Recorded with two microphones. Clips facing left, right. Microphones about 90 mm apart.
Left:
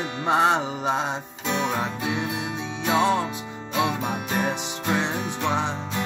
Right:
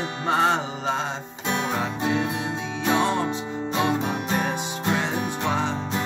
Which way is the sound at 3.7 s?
25° right (ahead or behind).